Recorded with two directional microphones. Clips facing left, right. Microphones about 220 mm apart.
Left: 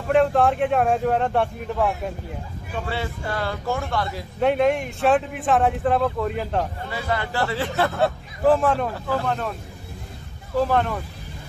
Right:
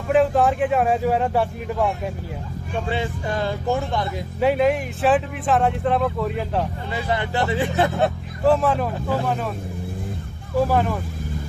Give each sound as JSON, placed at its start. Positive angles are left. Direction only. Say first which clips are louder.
{"t": 0.1, "sound": "speech", "louder": "even", "side_deg": 0}
{"t": 2.9, "sound": "speech", "louder": "right 3 dB", "side_deg": -20}
{"t": 4.4, "sound": "speech", "louder": "right 1 dB", "side_deg": -5}
{"t": 6.9, "sound": "speech", "louder": "right 2 dB", "side_deg": -20}
{"t": 8.5, "sound": "speech", "louder": "even", "side_deg": 0}
{"t": 10.6, "sound": "speech", "louder": "right 1 dB", "side_deg": -5}